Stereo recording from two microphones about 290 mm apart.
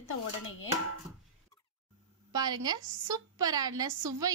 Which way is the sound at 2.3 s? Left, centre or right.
Centre.